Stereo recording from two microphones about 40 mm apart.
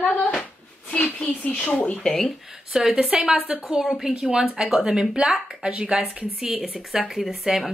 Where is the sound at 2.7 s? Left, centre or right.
Centre.